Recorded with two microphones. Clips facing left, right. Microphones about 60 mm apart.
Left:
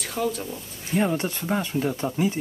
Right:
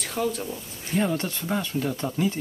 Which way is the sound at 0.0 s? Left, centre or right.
Centre.